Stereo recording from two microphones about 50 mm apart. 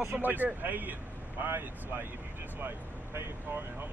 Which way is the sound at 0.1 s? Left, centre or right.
Right.